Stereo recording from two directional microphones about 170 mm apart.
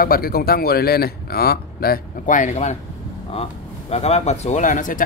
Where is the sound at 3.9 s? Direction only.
40° left (ahead or behind).